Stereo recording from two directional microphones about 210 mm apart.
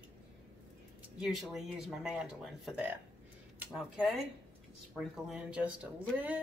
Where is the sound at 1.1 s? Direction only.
Centre (ahead or behind).